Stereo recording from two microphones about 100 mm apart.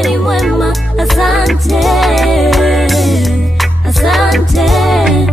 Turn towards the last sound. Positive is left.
turn(degrees=0)  # may be behind; listen again after turning